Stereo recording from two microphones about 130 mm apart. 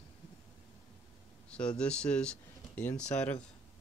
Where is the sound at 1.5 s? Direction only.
10° left (ahead or behind).